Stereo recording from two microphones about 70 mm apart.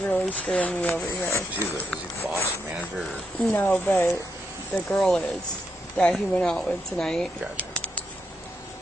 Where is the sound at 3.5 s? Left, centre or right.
Left.